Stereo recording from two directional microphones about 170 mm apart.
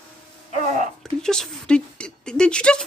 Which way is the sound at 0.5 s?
45° right (ahead or behind).